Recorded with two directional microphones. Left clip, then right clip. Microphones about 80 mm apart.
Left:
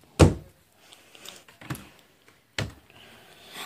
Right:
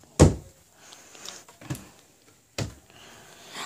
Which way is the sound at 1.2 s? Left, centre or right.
Right.